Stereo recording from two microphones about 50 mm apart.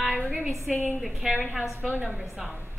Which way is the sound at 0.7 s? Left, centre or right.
Centre.